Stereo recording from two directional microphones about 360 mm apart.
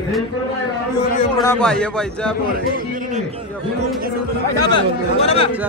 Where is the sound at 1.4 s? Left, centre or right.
Centre.